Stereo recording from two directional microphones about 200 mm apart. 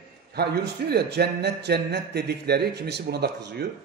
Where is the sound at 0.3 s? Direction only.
55° right (ahead or behind).